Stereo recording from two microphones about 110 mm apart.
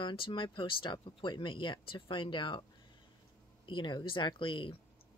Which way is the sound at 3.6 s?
45° left (ahead or behind).